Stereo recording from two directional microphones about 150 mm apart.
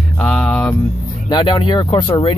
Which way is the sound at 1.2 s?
30° left (ahead or behind).